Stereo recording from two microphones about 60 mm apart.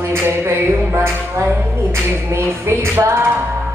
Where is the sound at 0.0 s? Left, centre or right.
Right.